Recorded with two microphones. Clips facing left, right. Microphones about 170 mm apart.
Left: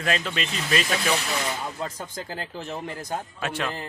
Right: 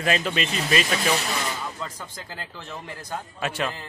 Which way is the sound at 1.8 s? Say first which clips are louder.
Left 4 dB; 45° left (ahead or behind).